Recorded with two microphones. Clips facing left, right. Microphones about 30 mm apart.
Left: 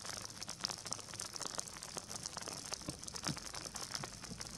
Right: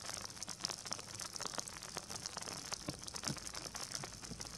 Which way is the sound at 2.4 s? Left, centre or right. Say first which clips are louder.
Left 1 dB; centre.